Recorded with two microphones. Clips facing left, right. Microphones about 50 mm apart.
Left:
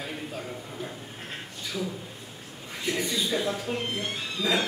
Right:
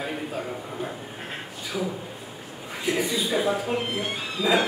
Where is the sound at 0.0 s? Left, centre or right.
Centre.